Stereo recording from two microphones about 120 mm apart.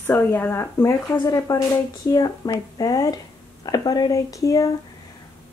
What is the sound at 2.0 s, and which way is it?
Speech, 35° left (ahead or behind).